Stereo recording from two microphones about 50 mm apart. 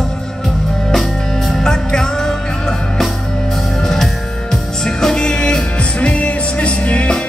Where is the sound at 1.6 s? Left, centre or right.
Centre.